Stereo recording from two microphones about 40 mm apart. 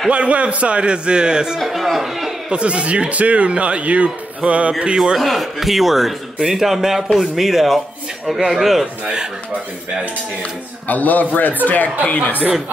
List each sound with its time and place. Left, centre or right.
0.1 s a man's voice: right
1.6 s a man's voice: centre
2.5 s speech: right
4.9 s a man's voice: centre
5.2 s a man's voice: centre
10.9 s a man's voice: left